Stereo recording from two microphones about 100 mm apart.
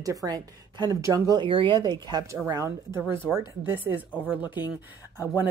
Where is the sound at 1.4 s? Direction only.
55° right (ahead or behind).